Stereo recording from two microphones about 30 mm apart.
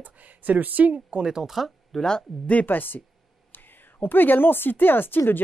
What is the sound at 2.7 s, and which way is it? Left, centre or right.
Speech, left.